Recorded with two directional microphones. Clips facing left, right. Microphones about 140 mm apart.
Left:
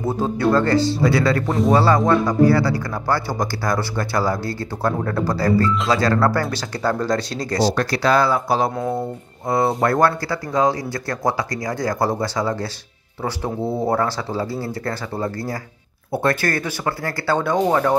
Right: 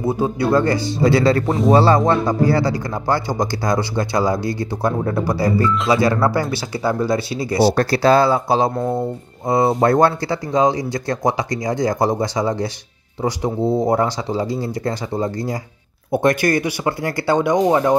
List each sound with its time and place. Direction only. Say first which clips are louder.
0.0 s speech: right 1 dB; 10° right (ahead or behind)
1.0 s speech: right 3 dB; 25° right (ahead or behind); by 7.7 s 10° right (ahead or behind)
7.7 s speech: right 4 dB; 30° right (ahead or behind)
9.8 s speech: right 3 dB; 20° right (ahead or behind)